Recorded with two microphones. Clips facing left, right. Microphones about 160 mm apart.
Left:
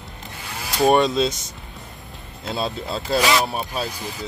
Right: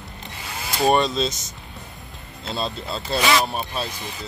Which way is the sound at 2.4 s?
10° left (ahead or behind).